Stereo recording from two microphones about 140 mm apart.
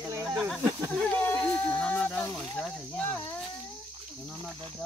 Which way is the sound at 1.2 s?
10° left (ahead or behind).